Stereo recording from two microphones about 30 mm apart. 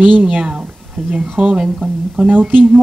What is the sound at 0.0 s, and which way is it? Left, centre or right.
A woman's voice, right.